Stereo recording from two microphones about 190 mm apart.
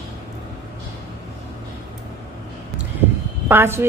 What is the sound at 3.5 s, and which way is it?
Speech, 10° right (ahead or behind).